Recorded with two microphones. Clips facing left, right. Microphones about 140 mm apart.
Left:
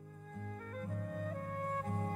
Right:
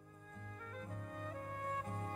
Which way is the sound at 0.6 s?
45° left (ahead or behind).